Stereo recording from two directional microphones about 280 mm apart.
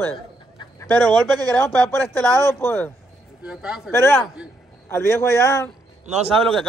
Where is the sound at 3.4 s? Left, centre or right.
Centre.